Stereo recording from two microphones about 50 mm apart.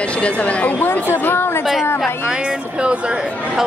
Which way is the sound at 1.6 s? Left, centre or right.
Centre.